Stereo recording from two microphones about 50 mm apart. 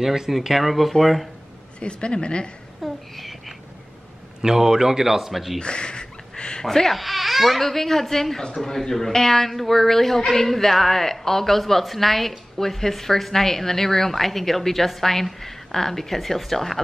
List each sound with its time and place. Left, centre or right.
0.0 s speech: centre
1.8 s a woman's voice: left
2.8 s a sound: centre
4.4 s a man's voice: centre
5.6 s speech: centre